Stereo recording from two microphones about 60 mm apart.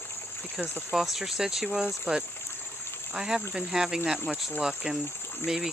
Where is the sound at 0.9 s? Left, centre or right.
Centre.